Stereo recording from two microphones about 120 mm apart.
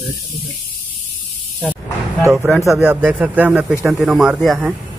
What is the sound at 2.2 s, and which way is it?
Speech, 25° right (ahead or behind).